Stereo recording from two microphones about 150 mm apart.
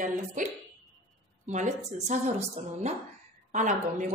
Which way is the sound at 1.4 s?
50° right (ahead or behind).